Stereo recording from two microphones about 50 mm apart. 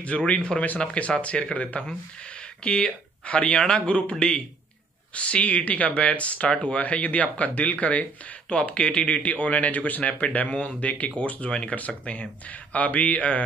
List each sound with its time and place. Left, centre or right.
0.0 s speech: left